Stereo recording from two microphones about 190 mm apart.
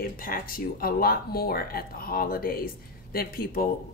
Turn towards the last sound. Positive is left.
turn(degrees=50)  # may be behind; listen again after turning